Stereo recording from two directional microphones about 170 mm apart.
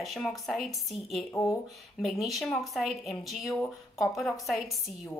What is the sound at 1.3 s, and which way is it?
Speech, 15° left (ahead or behind).